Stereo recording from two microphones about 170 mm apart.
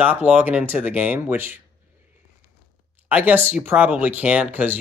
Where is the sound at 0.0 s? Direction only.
10° right (ahead or behind).